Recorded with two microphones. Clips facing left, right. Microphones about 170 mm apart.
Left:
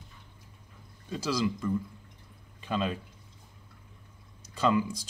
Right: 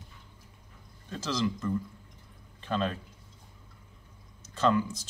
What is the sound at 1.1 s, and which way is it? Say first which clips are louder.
Speech: left 1 dB; 10° left (ahead or behind).